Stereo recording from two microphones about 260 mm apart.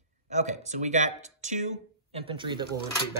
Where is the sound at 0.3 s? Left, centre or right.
Right.